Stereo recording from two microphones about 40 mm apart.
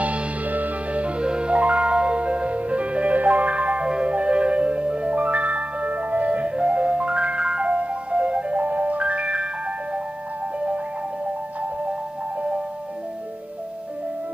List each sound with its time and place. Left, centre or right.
0.0 s music: right
3.8 s music: right
8.5 s marimba: right